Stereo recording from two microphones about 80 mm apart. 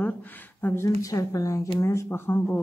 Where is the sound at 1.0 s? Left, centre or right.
Left.